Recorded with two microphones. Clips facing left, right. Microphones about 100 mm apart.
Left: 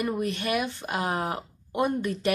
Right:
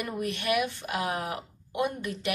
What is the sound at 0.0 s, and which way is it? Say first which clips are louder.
Speech: left 4 dB; 30° left (ahead or behind).